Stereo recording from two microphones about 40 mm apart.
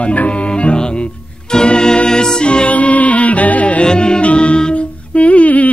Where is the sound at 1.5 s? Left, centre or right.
Centre; by 3.8 s left.